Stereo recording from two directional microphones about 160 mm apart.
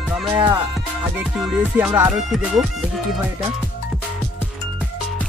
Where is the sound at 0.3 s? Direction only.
25° right (ahead or behind).